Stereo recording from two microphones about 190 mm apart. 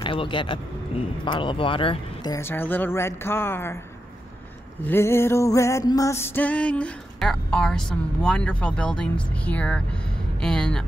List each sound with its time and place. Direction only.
0.0 s speech: 25° left (ahead or behind)
4.8 s music: 10° left (ahead or behind)
10.4 s speech: 5° left (ahead or behind)